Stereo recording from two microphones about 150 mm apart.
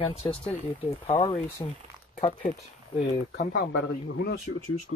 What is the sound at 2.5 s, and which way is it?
Speech, 60° left (ahead or behind).